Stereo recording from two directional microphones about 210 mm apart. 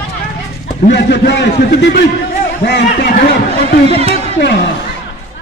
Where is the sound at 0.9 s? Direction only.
55° left (ahead or behind).